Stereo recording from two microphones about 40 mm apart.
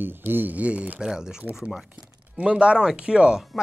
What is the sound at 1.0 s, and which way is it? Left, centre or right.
Speech, centre.